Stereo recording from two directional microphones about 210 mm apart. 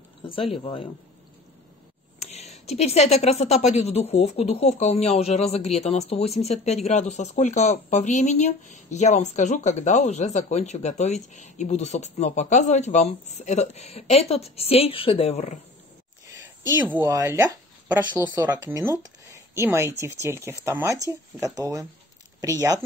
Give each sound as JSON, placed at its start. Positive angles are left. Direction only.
{"t": 0.3, "sound": "speech", "side_deg": 25}
{"t": 2.1, "sound": "speech", "side_deg": 30}
{"t": 16.3, "sound": "a sound", "side_deg": -10}
{"t": 17.0, "sound": "speech", "side_deg": -15}